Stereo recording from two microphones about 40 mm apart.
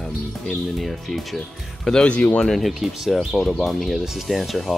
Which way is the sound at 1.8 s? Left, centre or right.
Centre.